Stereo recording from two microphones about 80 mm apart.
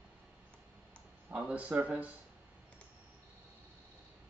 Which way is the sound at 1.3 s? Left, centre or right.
Centre.